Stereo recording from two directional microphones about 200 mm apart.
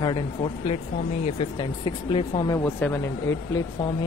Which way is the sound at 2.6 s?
10° left (ahead or behind).